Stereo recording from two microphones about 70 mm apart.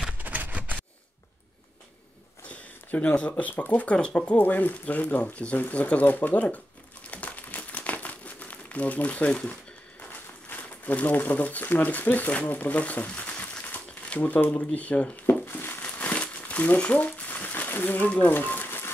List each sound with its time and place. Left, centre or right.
0.2 s a sound: right
2.4 s speech: left
7.1 s crumpling: left
10.0 s speech: left
15.4 s crumpling: left